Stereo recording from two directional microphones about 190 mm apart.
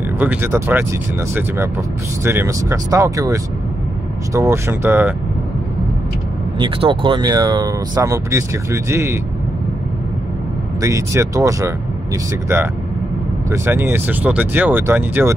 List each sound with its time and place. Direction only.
0.2 s speech: 10° right (ahead or behind)
2.2 s speech: 15° right (ahead or behind)
6.6 s speech: 25° right (ahead or behind)
10.8 s speech: 15° right (ahead or behind)
13.5 s speech: 10° right (ahead or behind)